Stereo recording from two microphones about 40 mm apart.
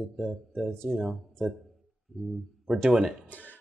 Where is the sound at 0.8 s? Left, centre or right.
Centre.